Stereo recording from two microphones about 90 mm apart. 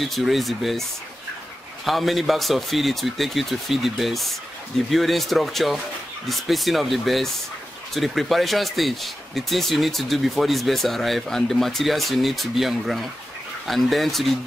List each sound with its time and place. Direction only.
0.0 s speech: centre (ahead or behind)
1.9 s speech: centre (ahead or behind)